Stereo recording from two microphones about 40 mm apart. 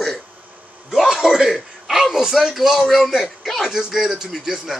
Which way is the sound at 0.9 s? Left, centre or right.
Centre.